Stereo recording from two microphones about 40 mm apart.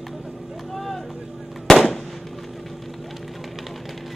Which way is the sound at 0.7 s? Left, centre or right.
Centre.